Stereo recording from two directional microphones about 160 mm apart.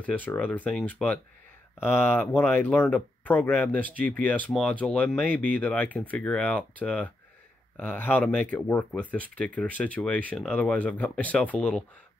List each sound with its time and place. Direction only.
0.0 s speech: 10° left (ahead or behind)